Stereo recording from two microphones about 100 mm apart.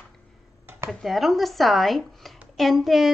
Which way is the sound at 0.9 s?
Centre (ahead or behind).